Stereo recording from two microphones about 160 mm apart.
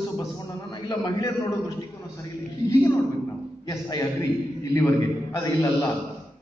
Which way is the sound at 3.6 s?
20° left (ahead or behind).